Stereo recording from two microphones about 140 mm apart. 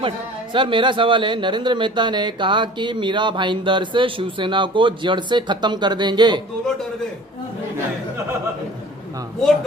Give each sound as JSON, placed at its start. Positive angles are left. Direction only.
{"t": 0.0, "sound": "a man's voice", "side_deg": -35}